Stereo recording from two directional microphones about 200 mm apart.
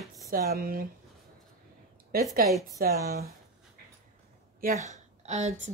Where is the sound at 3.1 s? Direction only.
50° right (ahead or behind).